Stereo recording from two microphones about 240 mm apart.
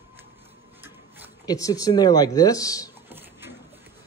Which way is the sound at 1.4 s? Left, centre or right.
Centre.